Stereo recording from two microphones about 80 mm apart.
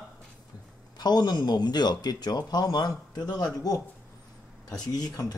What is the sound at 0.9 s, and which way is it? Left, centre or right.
Speech, left.